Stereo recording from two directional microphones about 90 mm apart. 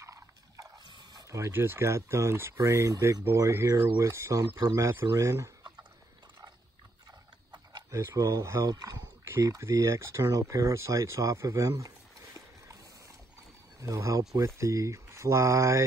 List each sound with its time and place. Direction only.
0.0 s a sound: 35° right (ahead or behind)
0.8 s dog: 55° right (ahead or behind)
1.3 s speech: 30° right (ahead or behind)
7.9 s speech: 35° right (ahead or behind)
13.7 s speech: 35° right (ahead or behind)